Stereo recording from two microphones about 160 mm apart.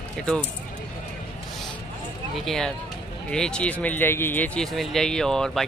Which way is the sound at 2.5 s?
5° left (ahead or behind).